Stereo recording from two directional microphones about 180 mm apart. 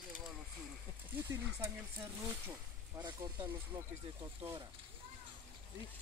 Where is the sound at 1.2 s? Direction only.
15° right (ahead or behind).